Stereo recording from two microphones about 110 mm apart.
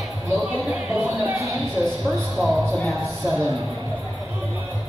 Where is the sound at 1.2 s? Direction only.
25° right (ahead or behind).